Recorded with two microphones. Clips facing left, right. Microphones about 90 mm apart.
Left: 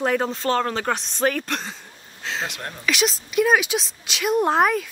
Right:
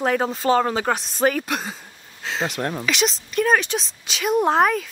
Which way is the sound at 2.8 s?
Centre (ahead or behind).